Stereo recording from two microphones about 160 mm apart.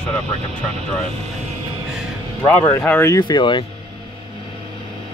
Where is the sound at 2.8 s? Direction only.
10° left (ahead or behind).